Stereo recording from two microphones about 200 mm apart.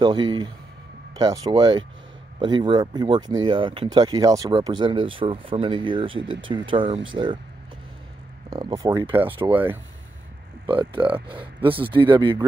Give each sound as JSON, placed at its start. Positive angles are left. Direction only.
{"t": 0.0, "sound": "speech", "side_deg": -25}
{"t": 8.5, "sound": "speech", "side_deg": -20}
{"t": 10.7, "sound": "speech", "side_deg": -25}